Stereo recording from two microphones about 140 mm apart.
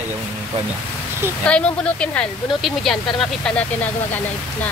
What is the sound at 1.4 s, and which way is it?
Speech, 10° left (ahead or behind).